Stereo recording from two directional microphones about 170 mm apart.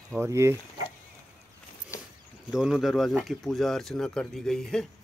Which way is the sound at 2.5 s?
Centre (ahead or behind).